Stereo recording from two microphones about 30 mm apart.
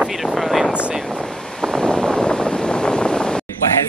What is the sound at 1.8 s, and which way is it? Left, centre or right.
Wind noise, left.